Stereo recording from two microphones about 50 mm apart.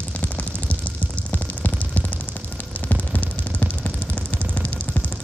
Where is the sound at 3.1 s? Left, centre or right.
Left.